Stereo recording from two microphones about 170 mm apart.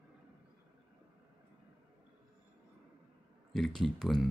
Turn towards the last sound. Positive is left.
turn(degrees=0)  # may be behind; listen again after turning